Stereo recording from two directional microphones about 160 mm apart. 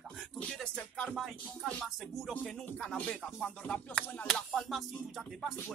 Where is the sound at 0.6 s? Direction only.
5° left (ahead or behind).